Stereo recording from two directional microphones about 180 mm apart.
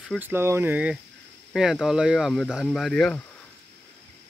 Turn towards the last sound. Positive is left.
turn(degrees=0)  # may be behind; listen again after turning